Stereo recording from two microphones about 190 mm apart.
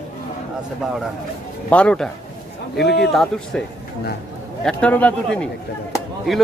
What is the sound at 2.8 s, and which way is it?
Speech, 65° left (ahead or behind).